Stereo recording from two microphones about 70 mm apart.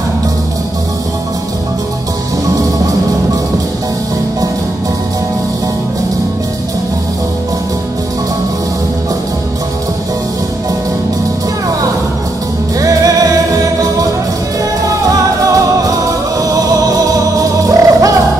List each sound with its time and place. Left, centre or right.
12.8 s music: right